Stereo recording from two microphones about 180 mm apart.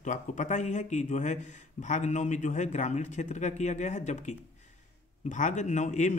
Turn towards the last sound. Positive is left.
turn(degrees=40)  # may be behind; listen again after turning